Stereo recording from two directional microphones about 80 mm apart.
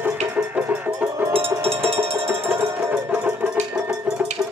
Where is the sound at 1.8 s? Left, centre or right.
Right.